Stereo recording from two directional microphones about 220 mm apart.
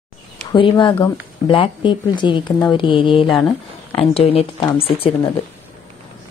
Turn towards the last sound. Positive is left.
turn(degrees=25)  # may be behind; listen again after turning